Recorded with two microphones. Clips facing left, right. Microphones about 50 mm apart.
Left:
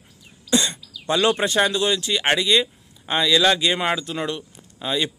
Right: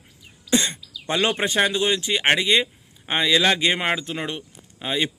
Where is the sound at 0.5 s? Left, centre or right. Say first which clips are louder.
Left 1 dB; right.